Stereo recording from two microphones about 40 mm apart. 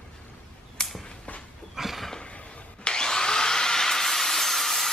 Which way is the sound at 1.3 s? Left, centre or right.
Left.